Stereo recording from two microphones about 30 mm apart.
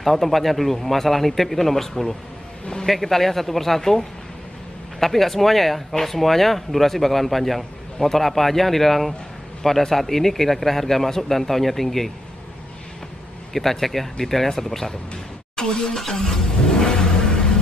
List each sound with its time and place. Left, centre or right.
0.0 s speech: centre
5.0 s speech: centre
13.5 s speech: centre
15.5 s shatter: left
16.1 s vehicle: centre